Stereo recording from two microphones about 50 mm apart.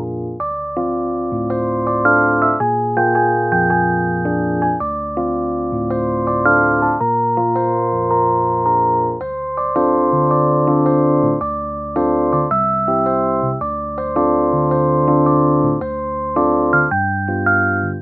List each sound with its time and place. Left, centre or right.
1.9 s music: centre
6.3 s music: centre
7.5 s music: centre
8.1 s music: centre
9.8 s electric piano: centre
10.9 s keyboard: centre
12.0 s music: centre
13.1 s keyboard: centre
14.1 s electric piano: centre
16.3 s music: centre